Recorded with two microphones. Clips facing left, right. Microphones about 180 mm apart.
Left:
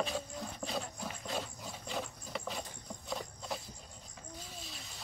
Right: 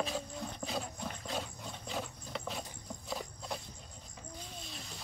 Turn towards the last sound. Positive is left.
turn(degrees=0)  # may be behind; listen again after turning